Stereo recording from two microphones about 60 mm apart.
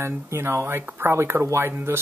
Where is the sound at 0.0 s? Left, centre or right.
Right.